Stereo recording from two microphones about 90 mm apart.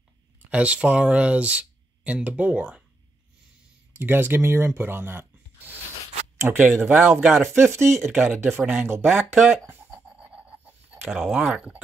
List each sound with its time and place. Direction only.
0.5 s speech: 15° right (ahead or behind)
3.9 s speech: 25° right (ahead or behind)
7.2 s speech: 5° right (ahead or behind)
7.4 s speech: 30° right (ahead or behind)
7.8 s speech: centre (ahead or behind)
8.2 s speech: 20° right (ahead or behind)
9.0 s speech: 5° right (ahead or behind)
9.8 s pant: 10° right (ahead or behind)
11.1 s speech: centre (ahead or behind)